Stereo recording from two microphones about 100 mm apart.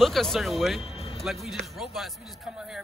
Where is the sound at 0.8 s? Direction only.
90° left.